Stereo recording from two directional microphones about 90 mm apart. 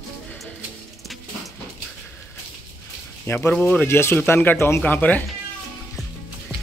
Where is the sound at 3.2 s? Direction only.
25° left (ahead or behind).